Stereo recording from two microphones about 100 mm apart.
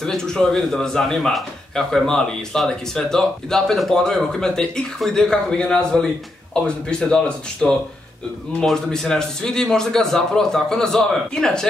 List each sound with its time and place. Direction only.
0.0 s speech: 5° left (ahead or behind)